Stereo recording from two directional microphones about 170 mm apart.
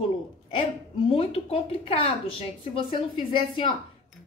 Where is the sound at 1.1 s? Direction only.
35° left (ahead or behind).